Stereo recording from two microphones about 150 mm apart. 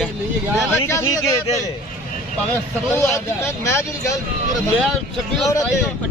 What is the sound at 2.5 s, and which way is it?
Speech, 15° left (ahead or behind).